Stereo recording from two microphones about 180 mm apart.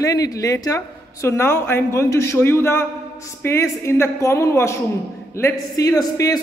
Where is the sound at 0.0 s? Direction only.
20° left (ahead or behind).